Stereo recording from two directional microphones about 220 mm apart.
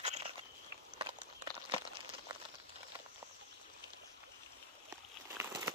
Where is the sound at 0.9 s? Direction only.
20° right (ahead or behind).